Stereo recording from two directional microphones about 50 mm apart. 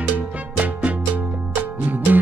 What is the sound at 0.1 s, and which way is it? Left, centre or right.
Music, right.